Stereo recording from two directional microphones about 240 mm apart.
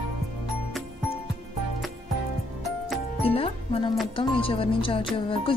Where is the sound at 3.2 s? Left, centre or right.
Left.